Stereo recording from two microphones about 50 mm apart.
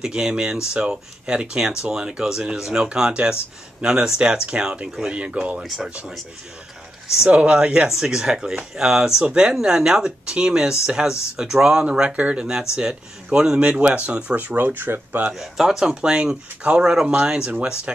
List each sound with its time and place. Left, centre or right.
0.0 s speech: centre
5.6 s speech: centre
7.2 s speech: right
7.9 s speech: centre; by 15.2 s right
15.3 s speech: centre; by 18.0 s right